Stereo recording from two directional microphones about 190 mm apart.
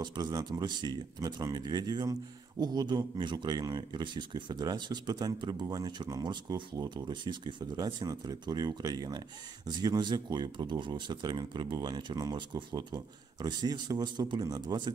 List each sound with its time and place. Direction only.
0.0 s speech: 20° right (ahead or behind)